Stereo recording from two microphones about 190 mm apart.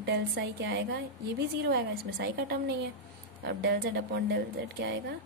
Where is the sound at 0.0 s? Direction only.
60° right (ahead or behind).